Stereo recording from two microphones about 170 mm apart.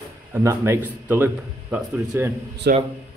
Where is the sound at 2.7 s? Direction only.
70° right (ahead or behind).